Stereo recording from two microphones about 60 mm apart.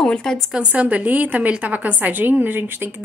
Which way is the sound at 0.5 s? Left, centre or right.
Right.